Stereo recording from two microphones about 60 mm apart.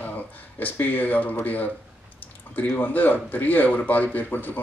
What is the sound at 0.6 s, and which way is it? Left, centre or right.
Speech, left.